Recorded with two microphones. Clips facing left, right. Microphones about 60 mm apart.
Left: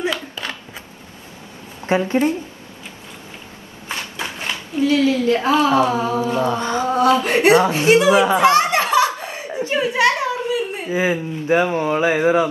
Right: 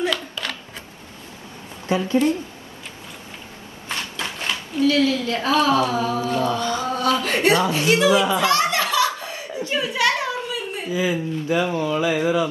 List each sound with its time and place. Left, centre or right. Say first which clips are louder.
0.0 s a sound: left 1 dB; left
1.9 s a woman's voice: left 2 dB; left
4.8 s speech: left 3 dB; left